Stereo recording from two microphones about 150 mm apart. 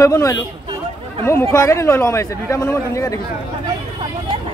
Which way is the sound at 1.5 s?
20° left (ahead or behind).